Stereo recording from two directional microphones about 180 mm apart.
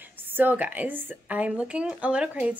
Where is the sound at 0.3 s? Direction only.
10° right (ahead or behind).